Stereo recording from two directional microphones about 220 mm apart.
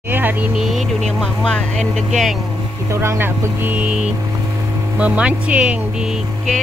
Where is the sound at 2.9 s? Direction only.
10° right (ahead or behind).